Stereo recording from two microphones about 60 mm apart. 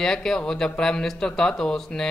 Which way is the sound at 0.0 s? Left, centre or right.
Centre.